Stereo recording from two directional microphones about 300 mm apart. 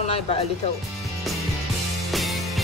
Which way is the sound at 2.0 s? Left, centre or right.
Centre.